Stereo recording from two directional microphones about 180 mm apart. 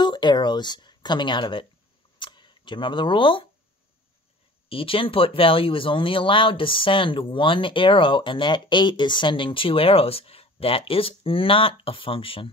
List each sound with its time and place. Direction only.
0.0 s speech: 25° left (ahead or behind)
2.1 s camera: 25° left (ahead or behind)
4.6 s speech: 30° left (ahead or behind)